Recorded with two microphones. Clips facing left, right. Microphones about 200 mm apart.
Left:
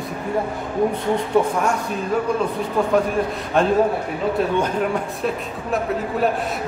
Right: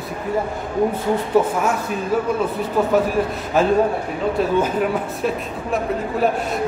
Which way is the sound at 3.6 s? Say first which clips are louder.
Right 1 dB; 5° right (ahead or behind).